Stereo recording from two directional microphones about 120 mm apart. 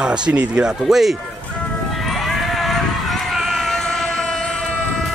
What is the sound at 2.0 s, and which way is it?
Run, centre (ahead or behind).